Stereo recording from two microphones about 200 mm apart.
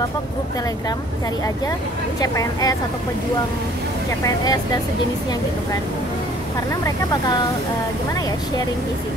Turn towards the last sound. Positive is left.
turn(degrees=20)  # may be behind; listen again after turning